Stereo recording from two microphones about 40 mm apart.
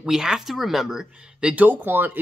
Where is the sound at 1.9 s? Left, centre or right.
Right.